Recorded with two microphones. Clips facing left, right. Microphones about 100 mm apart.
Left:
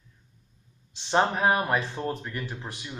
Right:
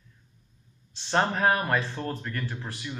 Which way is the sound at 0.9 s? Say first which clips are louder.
Left 2 dB; 15° left (ahead or behind).